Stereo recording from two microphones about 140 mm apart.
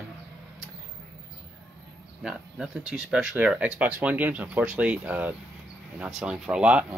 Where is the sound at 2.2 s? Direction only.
5° right (ahead or behind).